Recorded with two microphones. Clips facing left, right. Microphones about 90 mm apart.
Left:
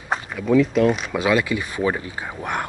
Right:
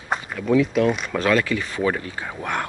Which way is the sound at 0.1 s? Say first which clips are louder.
Left 1 dB; centre (ahead or behind).